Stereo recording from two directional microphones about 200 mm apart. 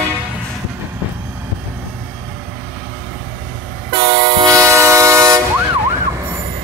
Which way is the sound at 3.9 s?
20° right (ahead or behind).